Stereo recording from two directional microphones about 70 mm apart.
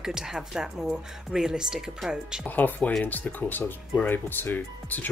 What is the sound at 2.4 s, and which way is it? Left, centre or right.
Speech, left.